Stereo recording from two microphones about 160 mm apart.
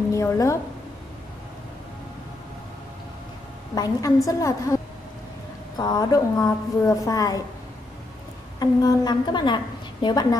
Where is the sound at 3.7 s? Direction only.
20° left (ahead or behind).